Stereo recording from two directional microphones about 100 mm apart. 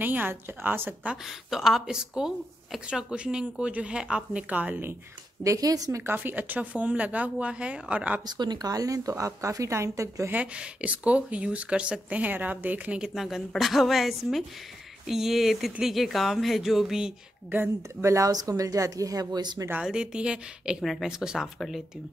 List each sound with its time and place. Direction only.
0.0 s a woman's voice: 20° right (ahead or behind)
1.1 s speech: 5° right (ahead or behind)
5.4 s speech: 35° right (ahead or behind); by 8.2 s 15° right (ahead or behind)
8.3 s speech: 45° right (ahead or behind)
10.3 s speech: 10° right (ahead or behind)
17.5 s speech: 15° right (ahead or behind)
18.0 s speech: 30° right (ahead or behind)
19.8 s speech: 10° right (ahead or behind)